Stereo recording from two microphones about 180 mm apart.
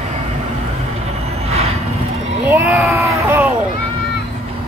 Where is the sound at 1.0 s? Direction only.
35° right (ahead or behind).